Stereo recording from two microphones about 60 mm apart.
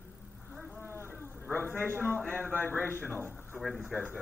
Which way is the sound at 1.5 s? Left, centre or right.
Left.